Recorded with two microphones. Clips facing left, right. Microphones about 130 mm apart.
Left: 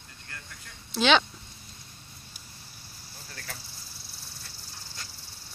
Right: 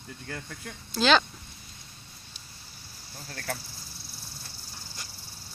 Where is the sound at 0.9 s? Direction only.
Centre (ahead or behind).